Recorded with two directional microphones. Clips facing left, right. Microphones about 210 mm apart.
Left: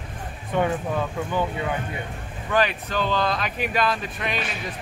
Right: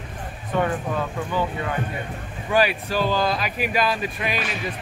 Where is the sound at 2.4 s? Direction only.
10° right (ahead or behind).